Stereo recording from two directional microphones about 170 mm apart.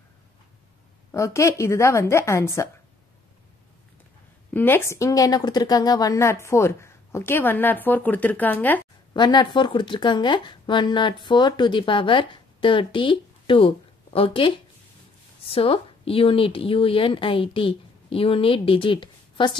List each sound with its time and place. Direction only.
1.1 s a woman's voice: 20° left (ahead or behind)
4.6 s a woman's voice: 15° left (ahead or behind)
9.1 s speech: 25° left (ahead or behind)